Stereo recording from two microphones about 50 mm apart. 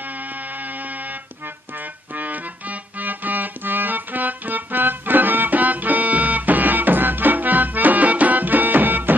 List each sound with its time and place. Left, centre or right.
2.1 s music: right